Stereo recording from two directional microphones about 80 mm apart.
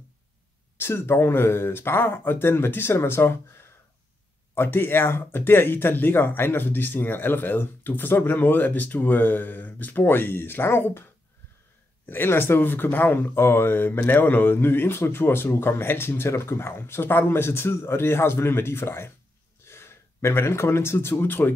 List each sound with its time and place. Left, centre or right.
0.7 s speech: left
12.1 s speech: left